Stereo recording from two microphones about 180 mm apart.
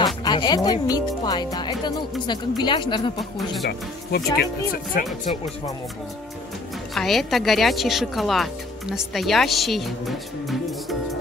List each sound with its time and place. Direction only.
0.0 s speech: 25° left (ahead or behind)
3.2 s speech: centre (ahead or behind)
6.9 s speech: centre (ahead or behind)